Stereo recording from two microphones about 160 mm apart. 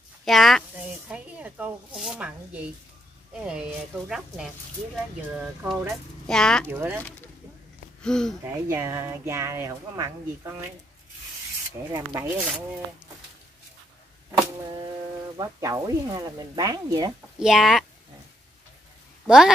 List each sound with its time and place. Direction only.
0.2 s speech: centre (ahead or behind)
6.7 s speech: 10° right (ahead or behind)
8.0 s speech: 5° left (ahead or behind)
8.6 s speech: 20° right (ahead or behind)
11.9 s speech: 20° right (ahead or behind)
15.3 s speech: 20° right (ahead or behind)
17.4 s speech: centre (ahead or behind)
19.2 s speech: 5° right (ahead or behind)